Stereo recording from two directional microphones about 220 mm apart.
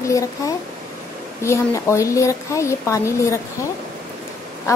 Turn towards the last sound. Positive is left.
turn(degrees=15)  # may be behind; listen again after turning